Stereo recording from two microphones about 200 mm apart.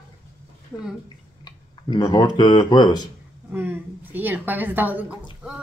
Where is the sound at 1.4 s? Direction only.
20° left (ahead or behind).